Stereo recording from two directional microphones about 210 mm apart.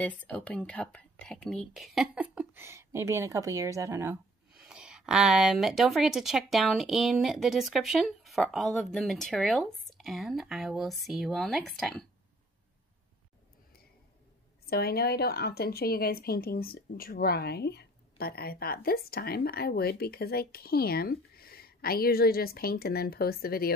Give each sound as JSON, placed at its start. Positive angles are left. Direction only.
{"t": 0.0, "sound": "speech", "side_deg": 5}
{"t": 14.7, "sound": "speech", "side_deg": 50}